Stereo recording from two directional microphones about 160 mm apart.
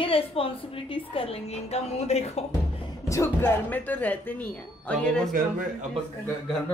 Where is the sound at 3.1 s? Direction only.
15° left (ahead or behind).